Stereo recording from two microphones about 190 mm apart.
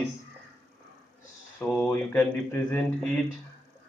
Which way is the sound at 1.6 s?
5° left (ahead or behind).